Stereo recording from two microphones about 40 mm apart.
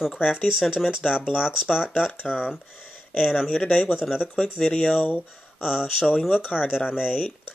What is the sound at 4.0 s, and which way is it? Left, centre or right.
Speech, right.